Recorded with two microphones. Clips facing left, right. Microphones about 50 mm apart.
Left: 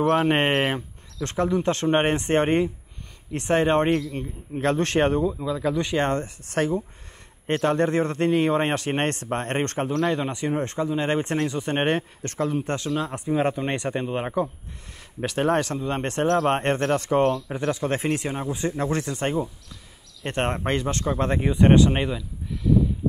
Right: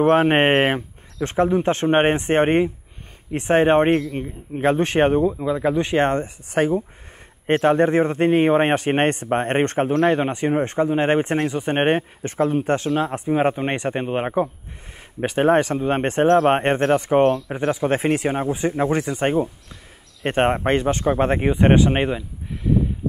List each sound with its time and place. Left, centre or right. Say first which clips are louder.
0.0 s speech: right 5 dB; right
1.2 s a man's voice: right 4 dB; centre
5.4 s a man's voice: right 4 dB; right
9.8 s speech: right 6 dB; right
10.6 s a man's voice: right 6 dB; centre
12.7 s a man's voice: right 6 dB; right
15.8 s a man's voice: right 6 dB; right
18.8 s a man's voice: right 5 dB; centre